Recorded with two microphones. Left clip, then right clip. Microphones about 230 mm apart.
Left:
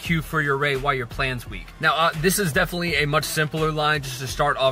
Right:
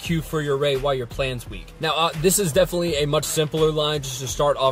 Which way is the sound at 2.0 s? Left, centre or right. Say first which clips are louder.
Even; centre.